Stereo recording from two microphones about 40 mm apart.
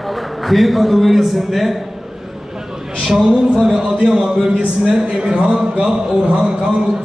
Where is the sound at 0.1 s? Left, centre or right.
Centre.